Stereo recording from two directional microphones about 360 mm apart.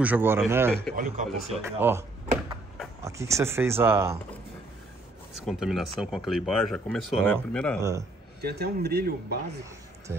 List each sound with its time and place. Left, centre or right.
0.0 s speech: centre
0.9 s speech: centre
1.6 s speech: centre
5.3 s speech: centre
8.4 s speech: right